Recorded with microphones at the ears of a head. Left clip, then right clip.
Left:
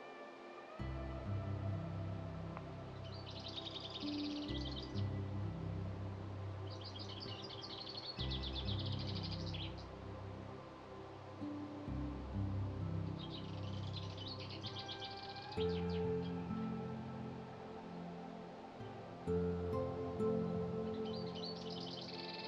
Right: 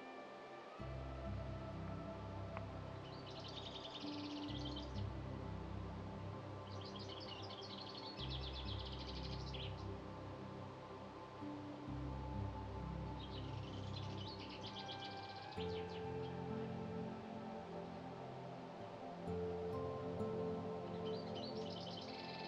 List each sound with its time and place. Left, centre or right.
4.0 s music: left
15.5 s music: left
19.2 s music: left